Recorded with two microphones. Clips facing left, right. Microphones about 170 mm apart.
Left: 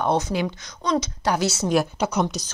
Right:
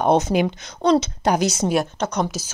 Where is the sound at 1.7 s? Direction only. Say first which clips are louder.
Even; 5° left (ahead or behind).